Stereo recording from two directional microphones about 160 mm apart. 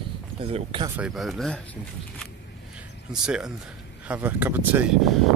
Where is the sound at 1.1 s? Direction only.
Centre (ahead or behind).